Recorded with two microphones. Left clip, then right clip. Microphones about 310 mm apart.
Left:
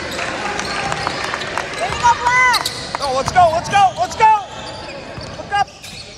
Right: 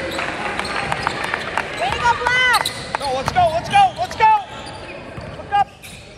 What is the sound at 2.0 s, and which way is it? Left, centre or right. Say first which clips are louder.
Basketball bounce: left 4 dB; right.